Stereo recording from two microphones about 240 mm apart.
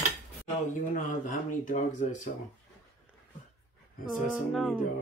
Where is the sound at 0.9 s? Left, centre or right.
Left.